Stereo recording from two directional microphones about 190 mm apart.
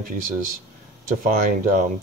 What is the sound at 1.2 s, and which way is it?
Speech, 45° right (ahead or behind).